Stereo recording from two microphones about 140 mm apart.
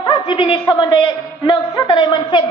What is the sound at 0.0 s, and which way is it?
A man's voice, 35° left (ahead or behind).